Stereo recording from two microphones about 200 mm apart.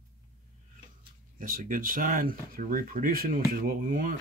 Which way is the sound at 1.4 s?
45° right (ahead or behind).